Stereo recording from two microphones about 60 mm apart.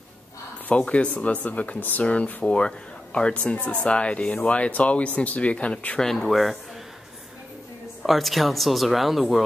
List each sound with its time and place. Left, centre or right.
0.7 s speech: left
5.9 s speech: centre
8.0 s speech: centre